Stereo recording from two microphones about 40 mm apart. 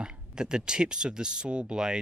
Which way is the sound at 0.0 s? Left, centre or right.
Centre.